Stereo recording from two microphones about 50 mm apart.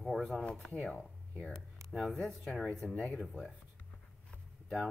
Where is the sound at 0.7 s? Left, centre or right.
Left.